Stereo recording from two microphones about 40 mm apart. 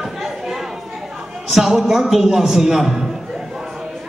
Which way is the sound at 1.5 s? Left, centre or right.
Centre.